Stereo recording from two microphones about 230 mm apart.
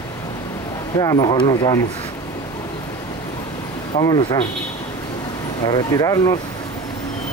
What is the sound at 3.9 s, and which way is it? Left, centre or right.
Speech, centre.